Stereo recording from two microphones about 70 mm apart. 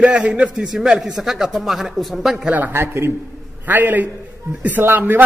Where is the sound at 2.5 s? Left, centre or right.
Right.